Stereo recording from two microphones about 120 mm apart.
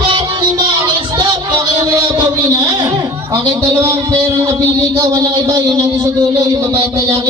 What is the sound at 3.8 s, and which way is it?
A man's voice, 25° right (ahead or behind).